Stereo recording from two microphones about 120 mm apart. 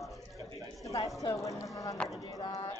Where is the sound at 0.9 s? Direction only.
30° left (ahead or behind).